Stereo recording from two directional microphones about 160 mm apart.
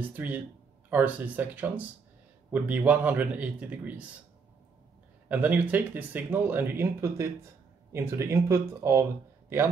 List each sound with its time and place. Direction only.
0.1 s speech: 10° right (ahead or behind)
5.3 s speech: 10° right (ahead or behind)